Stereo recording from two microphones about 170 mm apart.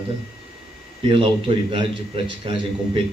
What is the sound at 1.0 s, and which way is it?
A man's voice, 30° right (ahead or behind).